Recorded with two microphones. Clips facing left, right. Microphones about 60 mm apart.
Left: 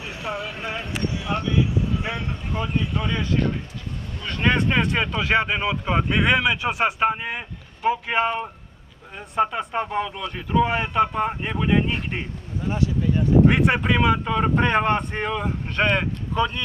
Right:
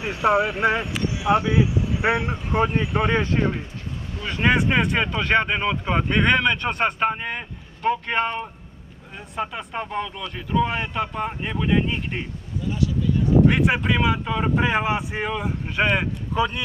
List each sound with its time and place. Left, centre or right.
0.2 s speech: right
0.8 s speech: centre
2.5 s speech: right
3.2 s speech: right
4.2 s speech: centre
12.6 s a sound: left
13.5 s speech: centre